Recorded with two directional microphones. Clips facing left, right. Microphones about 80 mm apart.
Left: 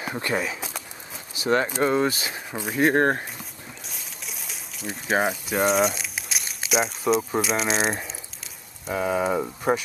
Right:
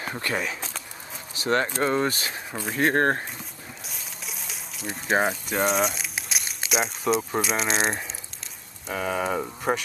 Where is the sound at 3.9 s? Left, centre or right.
Centre.